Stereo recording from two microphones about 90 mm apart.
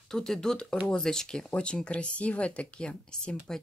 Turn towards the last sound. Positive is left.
turn(degrees=10)  # may be behind; listen again after turning